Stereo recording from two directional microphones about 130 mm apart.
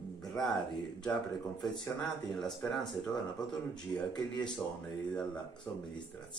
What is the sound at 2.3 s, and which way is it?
Speech, centre (ahead or behind).